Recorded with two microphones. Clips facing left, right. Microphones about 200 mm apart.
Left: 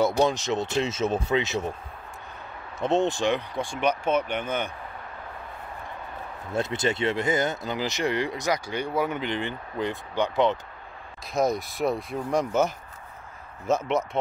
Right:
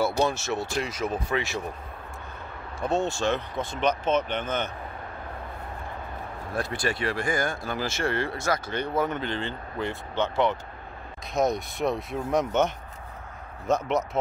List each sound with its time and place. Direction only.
0.0 s speech: 15° left (ahead or behind)
2.8 s speech: 20° left (ahead or behind)
6.5 s speech: 20° left (ahead or behind)
11.3 s speech: centre (ahead or behind)